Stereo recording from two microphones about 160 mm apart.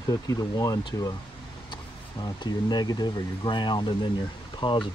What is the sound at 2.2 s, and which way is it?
Speech, 25° left (ahead or behind).